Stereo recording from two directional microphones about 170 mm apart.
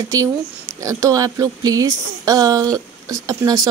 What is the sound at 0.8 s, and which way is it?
Speech, 20° right (ahead or behind).